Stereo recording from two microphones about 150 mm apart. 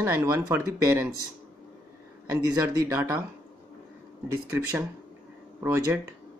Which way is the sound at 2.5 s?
20° right (ahead or behind).